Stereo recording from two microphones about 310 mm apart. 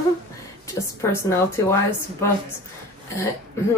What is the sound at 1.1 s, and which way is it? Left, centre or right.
Speech, centre.